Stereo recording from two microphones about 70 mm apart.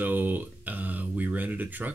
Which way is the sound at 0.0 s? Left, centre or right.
Right.